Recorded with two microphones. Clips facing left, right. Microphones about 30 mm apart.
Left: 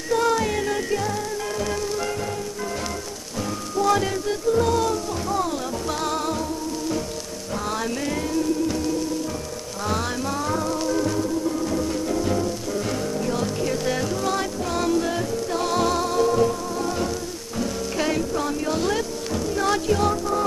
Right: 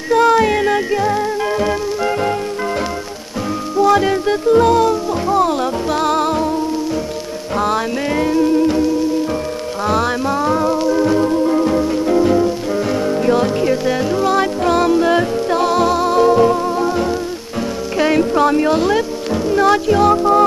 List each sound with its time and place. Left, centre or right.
0.1 s music: right
3.8 s music: right
7.5 s music: right
9.8 s music: right
11.1 s music: right
15.6 s music: right
17.6 s rain on surface: right
18.3 s a sound: right
18.9 s music: right
20.2 s music: right